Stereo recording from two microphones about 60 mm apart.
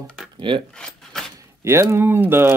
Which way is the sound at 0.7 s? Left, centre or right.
Centre.